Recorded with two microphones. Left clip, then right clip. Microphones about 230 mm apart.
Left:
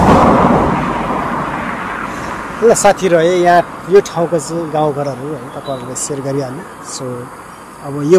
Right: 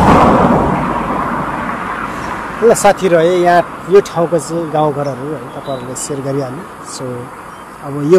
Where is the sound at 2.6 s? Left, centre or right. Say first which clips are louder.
Even; centre.